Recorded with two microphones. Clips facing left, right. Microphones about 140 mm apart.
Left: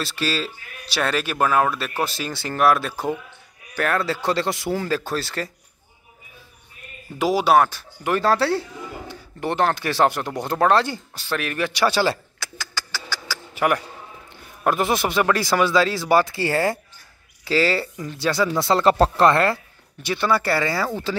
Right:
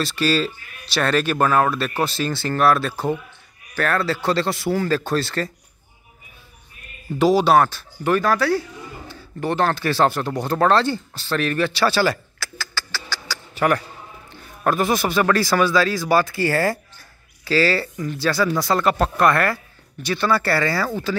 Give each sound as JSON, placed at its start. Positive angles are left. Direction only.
{"t": 0.0, "sound": "speech", "side_deg": 0}
{"t": 7.2, "sound": "speech", "side_deg": 10}
{"t": 8.2, "sound": "speech", "side_deg": 30}